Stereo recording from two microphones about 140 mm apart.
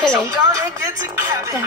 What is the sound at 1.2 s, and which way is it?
Speech, 20° right (ahead or behind).